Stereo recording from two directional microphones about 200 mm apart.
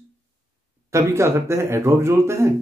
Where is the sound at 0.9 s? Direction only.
15° right (ahead or behind).